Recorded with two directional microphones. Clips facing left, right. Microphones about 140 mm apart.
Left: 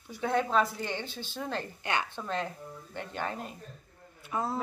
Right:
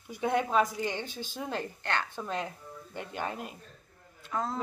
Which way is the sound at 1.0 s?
45° right (ahead or behind).